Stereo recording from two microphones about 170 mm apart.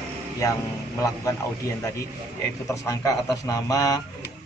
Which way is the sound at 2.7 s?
20° left (ahead or behind).